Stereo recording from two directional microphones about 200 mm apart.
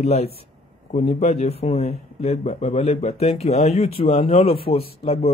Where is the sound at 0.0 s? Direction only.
30° left (ahead or behind).